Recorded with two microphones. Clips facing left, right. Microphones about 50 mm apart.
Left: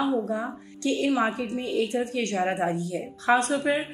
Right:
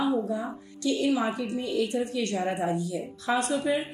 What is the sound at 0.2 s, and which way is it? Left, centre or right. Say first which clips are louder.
A woman's voice: left 1 dB; left.